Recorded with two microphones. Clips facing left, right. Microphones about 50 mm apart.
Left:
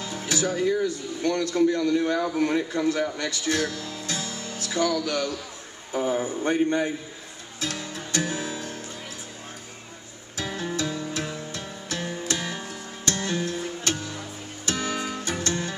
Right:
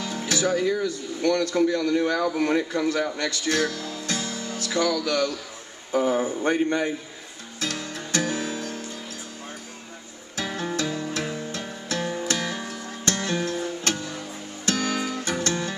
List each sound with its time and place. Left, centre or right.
0.0 s music: right
1.2 s speech: right
2.4 s speech: right
4.0 s music: right
5.0 s a man's voice: right
7.6 s music: right
10.3 s music: right
14.7 s guitar: right
15.4 s music: right